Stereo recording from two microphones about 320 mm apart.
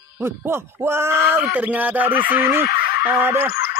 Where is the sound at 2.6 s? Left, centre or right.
Left.